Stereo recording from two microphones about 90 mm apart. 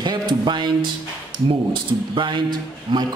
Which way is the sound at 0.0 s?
55° right (ahead or behind).